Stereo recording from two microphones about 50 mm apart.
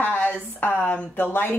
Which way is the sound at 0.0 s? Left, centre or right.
Left.